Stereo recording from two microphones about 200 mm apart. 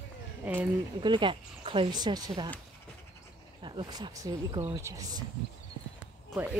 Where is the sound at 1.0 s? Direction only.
25° right (ahead or behind).